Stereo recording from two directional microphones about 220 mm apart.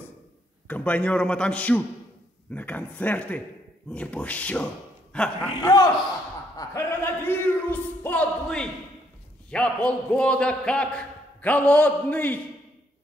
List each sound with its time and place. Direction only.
0.7 s a man's voice: 5° left (ahead or behind)
5.6 s speech: 20° left (ahead or behind)
6.5 s a sound: 15° left (ahead or behind)
9.5 s a man's voice: 5° left (ahead or behind)